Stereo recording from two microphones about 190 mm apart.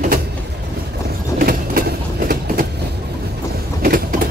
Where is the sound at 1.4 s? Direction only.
50° right (ahead or behind).